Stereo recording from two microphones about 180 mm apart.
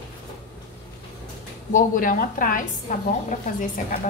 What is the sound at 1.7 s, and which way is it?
Speech, 45° left (ahead or behind).